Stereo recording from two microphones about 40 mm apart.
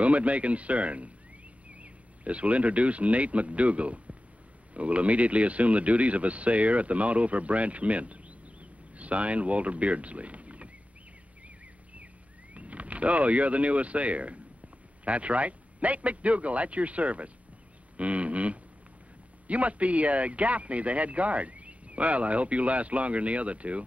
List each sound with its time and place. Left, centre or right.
0.0 s speech: right
12.5 s speech: right
17.9 s a sound: right
19.4 s speech: right